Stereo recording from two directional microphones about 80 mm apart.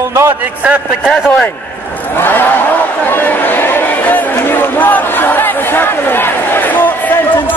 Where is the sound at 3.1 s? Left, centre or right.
Left.